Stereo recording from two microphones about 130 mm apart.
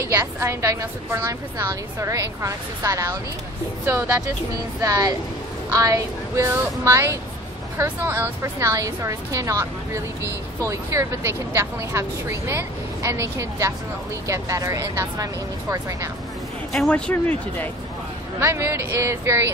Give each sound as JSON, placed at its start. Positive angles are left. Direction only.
{"t": 0.0, "sound": "speech", "side_deg": -20}
{"t": 4.8, "sound": "speech", "side_deg": -25}
{"t": 16.7, "sound": "a man's voice", "side_deg": 0}
{"t": 17.1, "sound": "speech", "side_deg": 10}
{"t": 18.4, "sound": "speech", "side_deg": -20}